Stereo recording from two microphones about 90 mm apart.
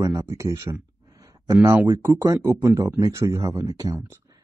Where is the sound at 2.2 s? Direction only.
35° right (ahead or behind).